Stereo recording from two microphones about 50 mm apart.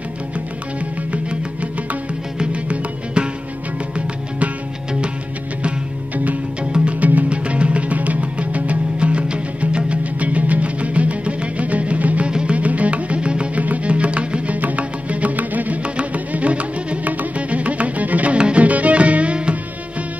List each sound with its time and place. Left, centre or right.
1.1 s music: right
6.6 s music: centre
12.3 s music: centre
12.5 s music: right